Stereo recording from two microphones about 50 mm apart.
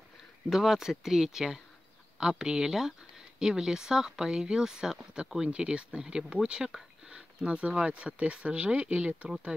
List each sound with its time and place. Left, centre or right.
0.5 s speech: centre